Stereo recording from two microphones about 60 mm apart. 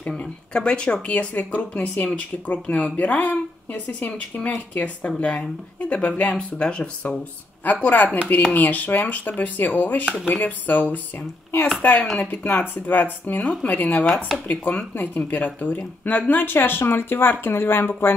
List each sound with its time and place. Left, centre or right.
0.2 s speech: centre
11.1 s speech: left
13.4 s speech: centre
13.7 s speech: left
14.0 s speech: centre
14.5 s speech: left